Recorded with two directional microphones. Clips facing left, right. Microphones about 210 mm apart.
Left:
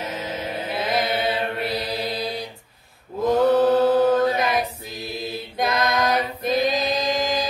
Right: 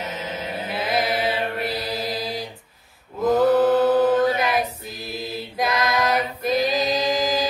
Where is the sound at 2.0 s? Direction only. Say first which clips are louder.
Even; centre (ahead or behind).